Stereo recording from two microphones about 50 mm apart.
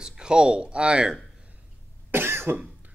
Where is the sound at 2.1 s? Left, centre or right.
Right.